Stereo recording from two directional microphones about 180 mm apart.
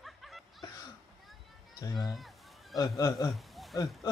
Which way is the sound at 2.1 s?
Centre (ahead or behind).